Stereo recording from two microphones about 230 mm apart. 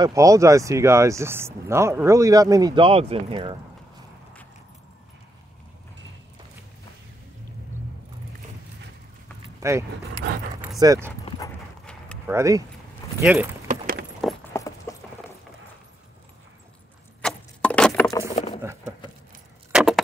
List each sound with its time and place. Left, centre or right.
0.0 s speech: centre
9.6 s keys jangling: centre
10.8 s speech: centre
11.1 s dog: centre
11.8 s clip-clop: centre
12.3 s speech: centre
14.5 s clip-clop: centre
17.2 s keys jangling: centre
18.3 s a sound: left
19.7 s keys jangling: centre